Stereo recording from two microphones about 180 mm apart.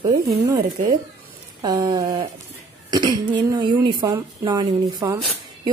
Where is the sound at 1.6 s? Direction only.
20° right (ahead or behind).